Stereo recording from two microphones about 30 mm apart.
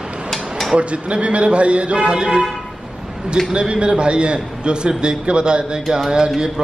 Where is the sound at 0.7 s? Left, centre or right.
Right.